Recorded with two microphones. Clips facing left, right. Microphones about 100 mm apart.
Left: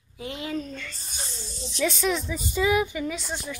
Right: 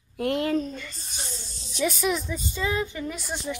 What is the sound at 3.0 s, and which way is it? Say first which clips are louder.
Speech: left 2 dB; 5° right (ahead or behind).